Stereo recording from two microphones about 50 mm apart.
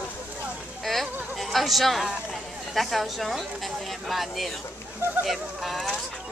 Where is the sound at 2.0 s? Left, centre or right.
Centre.